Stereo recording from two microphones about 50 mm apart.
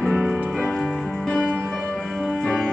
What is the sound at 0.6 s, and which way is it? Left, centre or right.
Music, centre.